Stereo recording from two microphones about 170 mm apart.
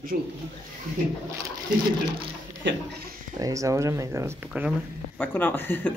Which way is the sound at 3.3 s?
20° right (ahead or behind).